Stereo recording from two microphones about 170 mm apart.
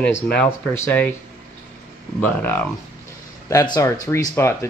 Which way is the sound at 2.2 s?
10° left (ahead or behind).